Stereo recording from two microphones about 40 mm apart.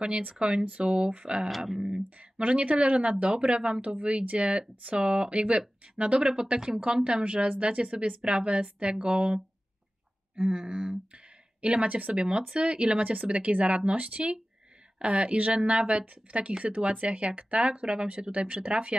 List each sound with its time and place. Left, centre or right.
0.4 s speech: centre
0.7 s speech: right
7.4 s speech: right; by 11.0 s centre
11.6 s speech: right